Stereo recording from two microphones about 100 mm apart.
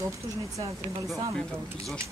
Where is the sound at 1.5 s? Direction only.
20° right (ahead or behind).